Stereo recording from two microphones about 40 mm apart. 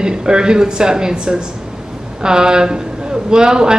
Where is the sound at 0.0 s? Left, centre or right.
Centre.